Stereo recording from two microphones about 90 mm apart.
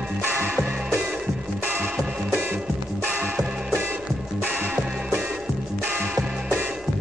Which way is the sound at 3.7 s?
20° right (ahead or behind).